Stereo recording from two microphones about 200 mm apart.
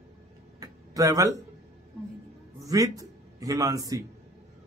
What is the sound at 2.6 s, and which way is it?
A man's voice, 15° right (ahead or behind).